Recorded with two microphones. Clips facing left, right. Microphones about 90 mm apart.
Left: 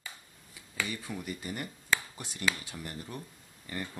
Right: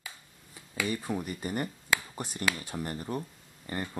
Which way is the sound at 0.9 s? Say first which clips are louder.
Right 5 dB; 40° right (ahead or behind).